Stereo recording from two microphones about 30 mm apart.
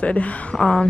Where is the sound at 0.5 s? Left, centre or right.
Left.